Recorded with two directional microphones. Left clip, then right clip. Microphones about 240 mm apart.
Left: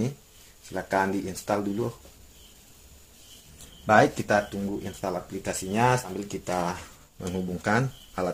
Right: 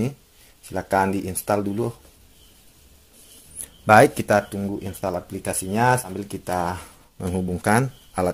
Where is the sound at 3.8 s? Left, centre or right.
Right.